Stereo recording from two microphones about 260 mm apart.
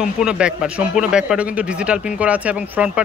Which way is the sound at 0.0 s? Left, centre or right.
Centre.